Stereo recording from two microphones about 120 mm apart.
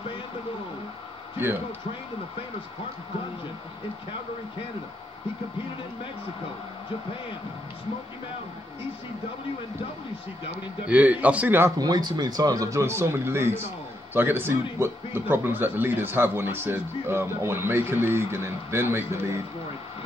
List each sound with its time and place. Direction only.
10.9 s a man's voice: 10° right (ahead or behind)
11.8 s speech: 35° right (ahead or behind)